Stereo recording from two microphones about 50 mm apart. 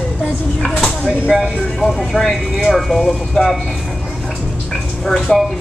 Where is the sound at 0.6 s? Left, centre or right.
Centre.